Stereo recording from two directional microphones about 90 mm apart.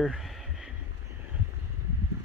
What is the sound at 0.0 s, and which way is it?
Speech, centre (ahead or behind).